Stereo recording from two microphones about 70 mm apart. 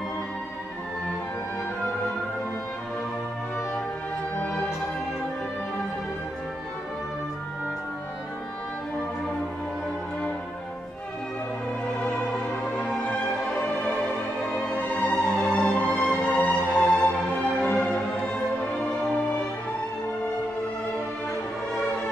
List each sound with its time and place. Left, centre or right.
4.4 s music: centre
12.7 s music: centre
14.6 s music: left
15.3 s music: centre
15.6 s music: left
17.7 s music: centre
18.7 s music: centre